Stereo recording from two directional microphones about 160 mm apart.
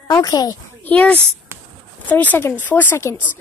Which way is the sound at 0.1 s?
25° left (ahead or behind).